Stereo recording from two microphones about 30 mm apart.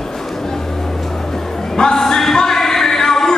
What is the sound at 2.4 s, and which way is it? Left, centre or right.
Music, centre.